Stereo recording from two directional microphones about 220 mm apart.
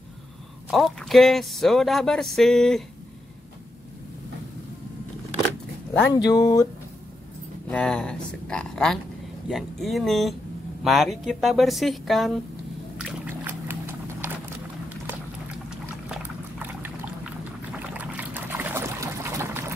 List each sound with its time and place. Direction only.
0.7 s speech: centre (ahead or behind)
6.1 s speech: 15° left (ahead or behind)
7.6 s speech: 5° left (ahead or behind)
12.9 s a sound: 10° right (ahead or behind)
16.1 s pour: 10° right (ahead or behind)
17.7 s boat: 10° right (ahead or behind)